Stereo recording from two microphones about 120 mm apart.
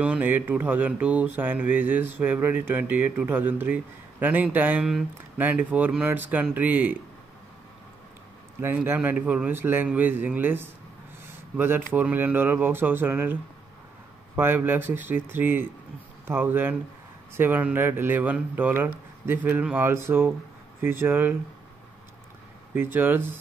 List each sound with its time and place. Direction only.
0.0 s speech: 15° right (ahead or behind)
8.5 s speech: 20° right (ahead or behind)
22.8 s speech: 15° right (ahead or behind)